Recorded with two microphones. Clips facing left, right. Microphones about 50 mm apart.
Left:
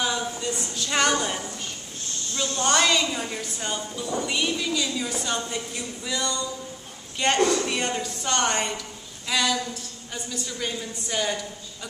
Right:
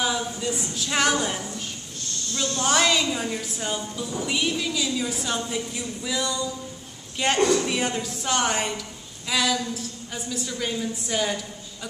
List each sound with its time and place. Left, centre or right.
0.0 s speech: centre
2.3 s speech: centre
2.6 s a woman's voice: centre